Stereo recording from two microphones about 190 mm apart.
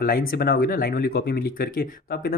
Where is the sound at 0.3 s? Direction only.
55° left (ahead or behind).